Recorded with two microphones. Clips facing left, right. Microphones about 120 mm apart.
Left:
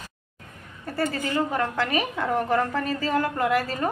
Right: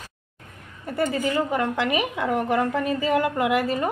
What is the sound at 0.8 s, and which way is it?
A woman's voice, 15° right (ahead or behind).